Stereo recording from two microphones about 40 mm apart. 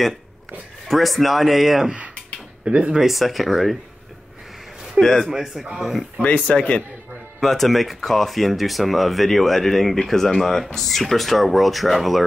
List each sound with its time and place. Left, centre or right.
0.8 s speech: centre
2.6 s speech: right
3.0 s speech: centre
5.0 s a man's voice: right
5.3 s a man's voice: centre
6.2 s speech: left
7.3 s speech: centre